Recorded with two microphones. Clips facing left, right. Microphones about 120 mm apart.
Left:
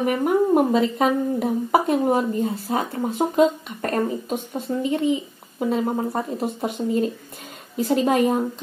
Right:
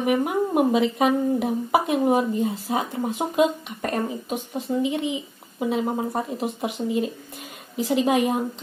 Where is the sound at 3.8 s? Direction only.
10° right (ahead or behind).